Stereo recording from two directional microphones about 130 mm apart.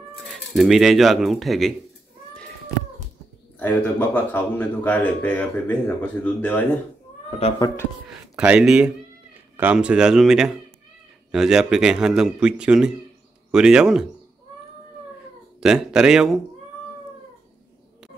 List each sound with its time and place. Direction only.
0.3 s speech: centre (ahead or behind)
3.5 s speech: 15° left (ahead or behind)
7.2 s speech: 50° left (ahead or behind)
8.4 s speech: 5° right (ahead or behind)
15.6 s speech: 5° right (ahead or behind)